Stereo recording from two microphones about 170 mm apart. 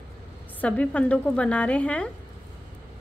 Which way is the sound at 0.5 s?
5° left (ahead or behind).